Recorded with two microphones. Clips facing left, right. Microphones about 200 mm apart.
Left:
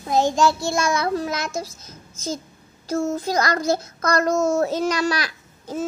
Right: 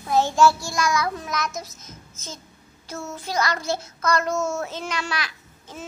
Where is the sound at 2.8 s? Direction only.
45° left (ahead or behind).